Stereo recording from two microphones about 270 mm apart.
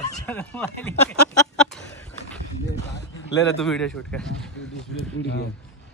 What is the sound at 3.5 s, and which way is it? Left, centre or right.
Speech, centre.